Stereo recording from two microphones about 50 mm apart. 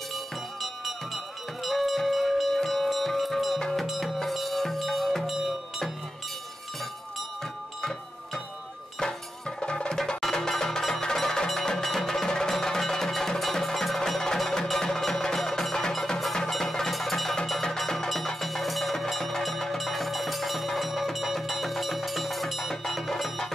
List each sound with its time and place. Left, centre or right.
0.1 s music: centre
9.6 s music: centre